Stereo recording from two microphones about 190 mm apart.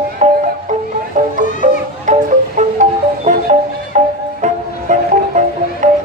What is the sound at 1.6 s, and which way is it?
Music, 40° right (ahead or behind).